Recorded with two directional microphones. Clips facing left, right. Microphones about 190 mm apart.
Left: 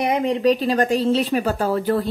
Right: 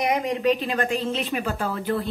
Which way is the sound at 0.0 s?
30° left (ahead or behind).